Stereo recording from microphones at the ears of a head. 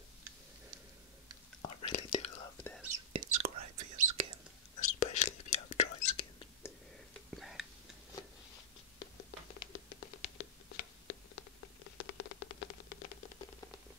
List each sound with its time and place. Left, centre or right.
1.6 s whispering: left
2.8 s whispering: right
4.7 s whispering: left
9.0 s patter: left